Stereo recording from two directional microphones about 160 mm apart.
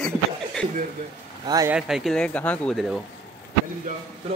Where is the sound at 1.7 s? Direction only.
5° right (ahead or behind).